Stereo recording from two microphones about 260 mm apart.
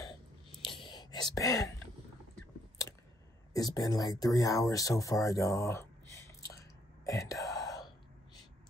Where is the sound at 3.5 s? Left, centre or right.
Centre.